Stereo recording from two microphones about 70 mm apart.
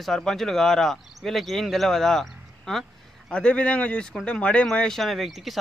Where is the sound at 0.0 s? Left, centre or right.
Centre.